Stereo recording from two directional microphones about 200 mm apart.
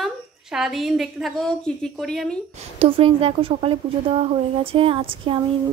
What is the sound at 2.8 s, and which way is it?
Speech, 30° right (ahead or behind).